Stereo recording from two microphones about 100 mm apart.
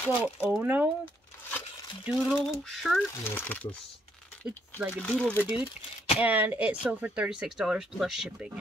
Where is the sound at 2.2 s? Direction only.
5° left (ahead or behind).